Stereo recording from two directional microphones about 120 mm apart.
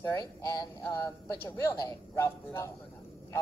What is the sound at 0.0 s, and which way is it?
Speech, 25° left (ahead or behind).